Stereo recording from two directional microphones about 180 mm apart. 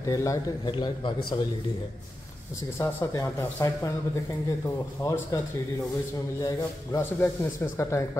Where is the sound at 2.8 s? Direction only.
15° left (ahead or behind).